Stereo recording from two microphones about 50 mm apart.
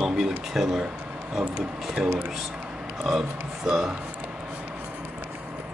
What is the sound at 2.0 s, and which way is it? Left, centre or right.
Speech, centre.